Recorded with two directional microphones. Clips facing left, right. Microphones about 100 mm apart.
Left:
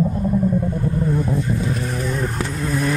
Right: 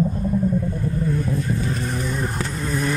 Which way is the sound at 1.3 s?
20° left (ahead or behind).